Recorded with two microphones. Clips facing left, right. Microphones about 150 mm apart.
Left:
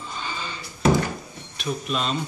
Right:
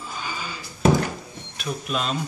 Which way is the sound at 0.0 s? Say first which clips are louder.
Even; 5° right (ahead or behind).